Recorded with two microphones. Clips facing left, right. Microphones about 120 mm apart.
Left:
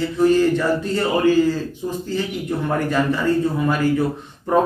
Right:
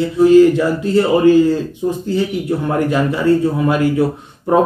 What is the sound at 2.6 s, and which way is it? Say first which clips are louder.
Speech: right 2 dB; 15° right (ahead or behind).